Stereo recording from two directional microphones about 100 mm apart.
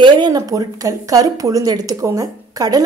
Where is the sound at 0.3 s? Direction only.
35° right (ahead or behind).